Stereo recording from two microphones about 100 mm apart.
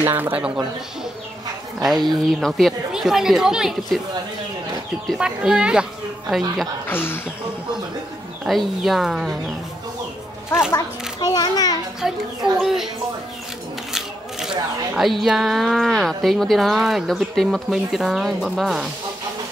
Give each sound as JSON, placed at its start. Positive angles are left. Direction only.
{"t": 0.0, "sound": "speech", "side_deg": -20}
{"t": 1.8, "sound": "speech", "side_deg": 0}
{"t": 5.1, "sound": "speech", "side_deg": -5}
{"t": 6.9, "sound": "speech", "side_deg": 20}
{"t": 8.5, "sound": "speech", "side_deg": 0}
{"t": 11.1, "sound": "a child's voice", "side_deg": 45}
{"t": 12.0, "sound": "speech", "side_deg": 0}
{"t": 15.0, "sound": "speech", "side_deg": 0}